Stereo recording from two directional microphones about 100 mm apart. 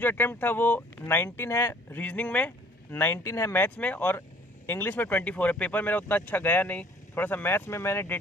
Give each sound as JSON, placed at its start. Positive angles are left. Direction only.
{"t": 0.0, "sound": "speech", "side_deg": 20}